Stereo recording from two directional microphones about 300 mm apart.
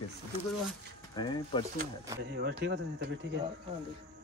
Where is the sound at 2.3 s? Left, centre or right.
Right.